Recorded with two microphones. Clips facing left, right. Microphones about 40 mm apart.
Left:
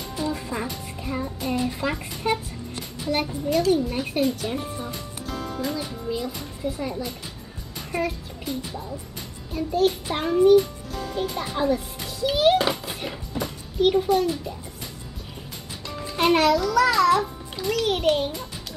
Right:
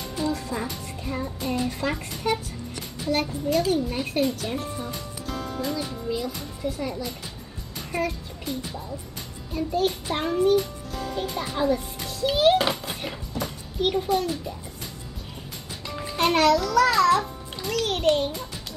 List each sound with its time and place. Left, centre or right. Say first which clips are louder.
0.3 s music: even; centre
0.7 s music: left 1 dB; centre
3.0 s a child's voice: even; centre
13.3 s a sound: left 1 dB; centre
16.2 s a child's voice: left 1 dB; centre